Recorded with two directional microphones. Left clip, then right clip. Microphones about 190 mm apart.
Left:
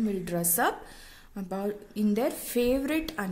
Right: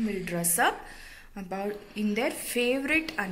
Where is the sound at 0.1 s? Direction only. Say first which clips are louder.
Left 1 dB; 50° left (ahead or behind).